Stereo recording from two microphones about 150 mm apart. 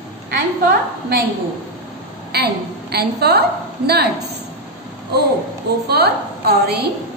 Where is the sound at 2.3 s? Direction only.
90° right.